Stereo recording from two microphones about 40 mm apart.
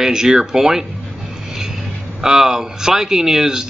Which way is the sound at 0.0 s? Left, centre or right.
Centre.